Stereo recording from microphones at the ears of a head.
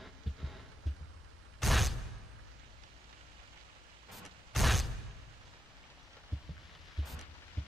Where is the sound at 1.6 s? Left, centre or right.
Centre.